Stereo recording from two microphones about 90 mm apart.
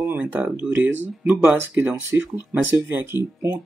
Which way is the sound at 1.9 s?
25° right (ahead or behind).